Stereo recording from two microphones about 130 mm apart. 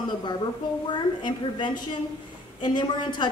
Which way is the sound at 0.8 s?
35° left (ahead or behind).